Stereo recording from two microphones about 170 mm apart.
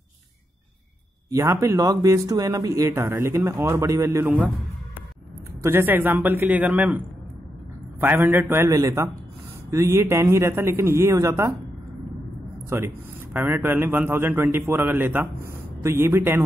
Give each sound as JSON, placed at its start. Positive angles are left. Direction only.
{"t": 1.3, "sound": "a man's voice", "side_deg": -20}
{"t": 5.6, "sound": "a man's voice", "side_deg": -15}
{"t": 8.0, "sound": "a man's voice", "side_deg": -10}
{"t": 12.6, "sound": "a man's voice", "side_deg": -15}